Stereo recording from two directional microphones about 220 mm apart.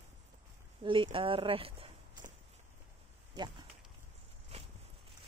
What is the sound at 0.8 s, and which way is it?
Speech, 25° right (ahead or behind).